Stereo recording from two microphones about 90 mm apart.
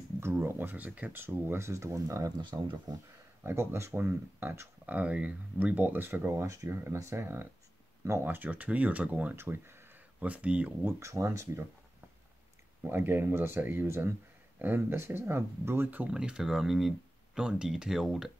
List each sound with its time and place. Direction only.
0.2 s speech: 25° right (ahead or behind)
2.3 s speech: 50° right (ahead or behind)
3.4 s speech: 30° right (ahead or behind)
6.4 s speech: 35° right (ahead or behind); by 9.4 s 15° right (ahead or behind)
9.4 s a sound: 25° right (ahead or behind)
10.3 s speech: 15° right (ahead or behind)
10.9 s speech: 35° right (ahead or behind)
12.8 s speech: 25° right (ahead or behind); by 18.3 s 5° right (ahead or behind)